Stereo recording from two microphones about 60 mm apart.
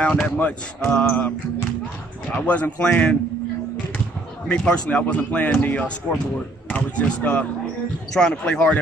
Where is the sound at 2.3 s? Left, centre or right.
Left.